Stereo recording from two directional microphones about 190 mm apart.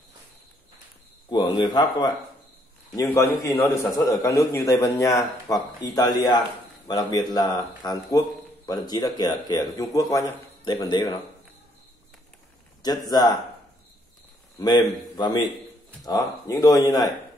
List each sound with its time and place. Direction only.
1.3 s a man's voice: 25° left (ahead or behind)
13.1 s speech: 20° left (ahead or behind)
14.6 s speech: 20° left (ahead or behind)